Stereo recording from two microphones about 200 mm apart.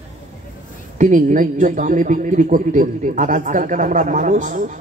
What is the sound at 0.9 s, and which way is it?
A man's voice, 40° right (ahead or behind).